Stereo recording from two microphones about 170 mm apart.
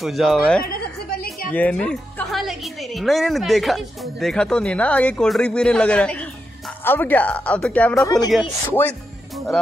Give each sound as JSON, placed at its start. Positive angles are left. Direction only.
{"t": 0.0, "sound": "a woman's voice", "side_deg": 0}
{"t": 0.7, "sound": "a sound", "side_deg": 60}
{"t": 1.5, "sound": "a woman's voice", "side_deg": 10}